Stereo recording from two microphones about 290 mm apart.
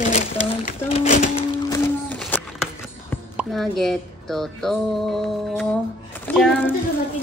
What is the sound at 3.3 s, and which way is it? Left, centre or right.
Speech, centre.